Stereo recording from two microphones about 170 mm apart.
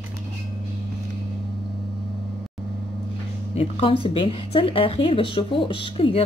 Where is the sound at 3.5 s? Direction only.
35° left (ahead or behind).